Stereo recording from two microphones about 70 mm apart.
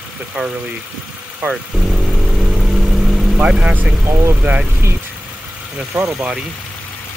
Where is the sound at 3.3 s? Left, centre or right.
Centre.